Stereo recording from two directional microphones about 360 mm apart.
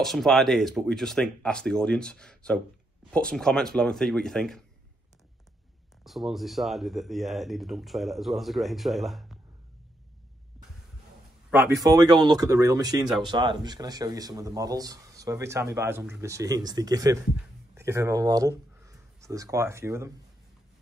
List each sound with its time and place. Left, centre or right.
0.0 s speech: centre
6.0 s speech: centre
11.5 s speech: centre